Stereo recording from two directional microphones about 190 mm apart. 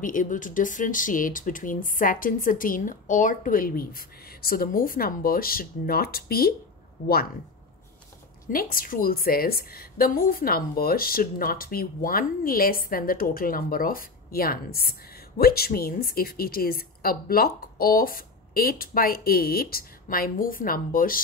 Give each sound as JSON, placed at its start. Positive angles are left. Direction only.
{"t": 0.0, "sound": "a woman's voice", "side_deg": 45}
{"t": 8.5, "sound": "a woman's voice", "side_deg": 50}